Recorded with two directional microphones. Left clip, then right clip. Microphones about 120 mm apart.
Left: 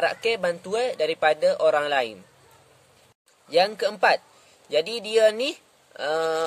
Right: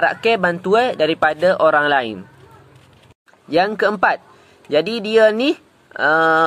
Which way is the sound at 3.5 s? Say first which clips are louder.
Right 5 dB; 25° left (ahead or behind).